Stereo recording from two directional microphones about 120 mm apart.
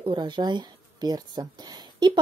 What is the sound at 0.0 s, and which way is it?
Speech, 40° right (ahead or behind).